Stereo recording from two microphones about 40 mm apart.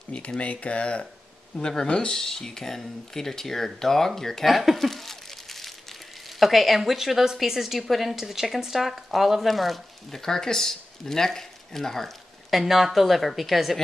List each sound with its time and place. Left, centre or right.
0.4 s speech: left
1.9 s speech: centre
4.5 s a sound: centre
6.4 s a woman's voice: centre
12.4 s a woman's voice: centre